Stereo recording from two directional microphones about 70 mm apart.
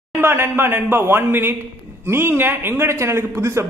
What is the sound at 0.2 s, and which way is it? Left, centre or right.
A man's voice, right.